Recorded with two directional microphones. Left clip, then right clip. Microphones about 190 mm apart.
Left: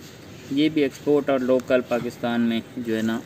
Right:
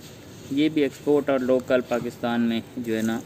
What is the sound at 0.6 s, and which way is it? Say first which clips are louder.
Speech: left 1 dB; 10° left (ahead or behind).